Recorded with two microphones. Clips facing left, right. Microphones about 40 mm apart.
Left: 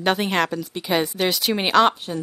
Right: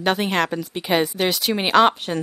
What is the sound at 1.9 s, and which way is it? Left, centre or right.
Speech, right.